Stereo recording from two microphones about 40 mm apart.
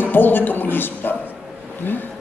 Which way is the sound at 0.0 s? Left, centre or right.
Left.